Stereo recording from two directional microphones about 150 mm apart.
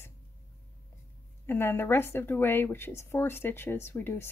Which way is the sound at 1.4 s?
15° left (ahead or behind).